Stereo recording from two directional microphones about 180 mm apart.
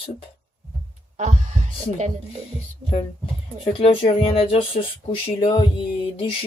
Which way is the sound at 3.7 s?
30° left (ahead or behind).